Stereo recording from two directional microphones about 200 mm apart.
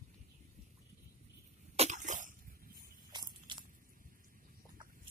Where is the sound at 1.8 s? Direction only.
40° right (ahead or behind).